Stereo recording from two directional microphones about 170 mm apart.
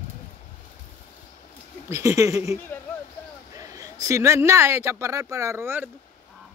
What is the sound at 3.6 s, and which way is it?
A man's voice, 20° right (ahead or behind).